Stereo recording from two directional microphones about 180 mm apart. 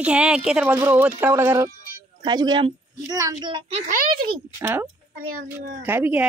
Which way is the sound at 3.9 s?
55° right (ahead or behind).